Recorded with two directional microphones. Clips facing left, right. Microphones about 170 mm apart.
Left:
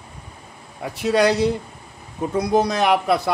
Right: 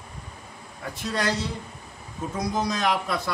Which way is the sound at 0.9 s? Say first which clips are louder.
Left 10 dB; 70° left (ahead or behind).